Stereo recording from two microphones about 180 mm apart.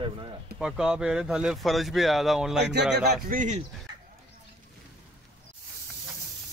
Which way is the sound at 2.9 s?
50° right (ahead or behind).